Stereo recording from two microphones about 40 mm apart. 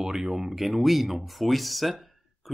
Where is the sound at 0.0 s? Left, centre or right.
Centre.